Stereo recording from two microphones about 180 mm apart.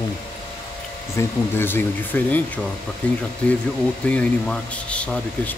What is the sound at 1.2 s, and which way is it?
Speech, 10° left (ahead or behind).